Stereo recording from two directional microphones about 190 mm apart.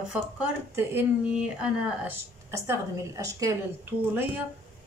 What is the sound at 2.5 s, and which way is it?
A woman's voice, 15° right (ahead or behind).